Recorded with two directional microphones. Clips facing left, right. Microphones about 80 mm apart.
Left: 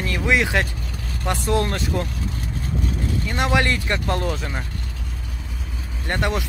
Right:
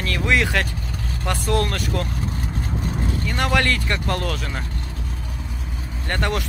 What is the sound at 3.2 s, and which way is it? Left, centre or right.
Speech, centre.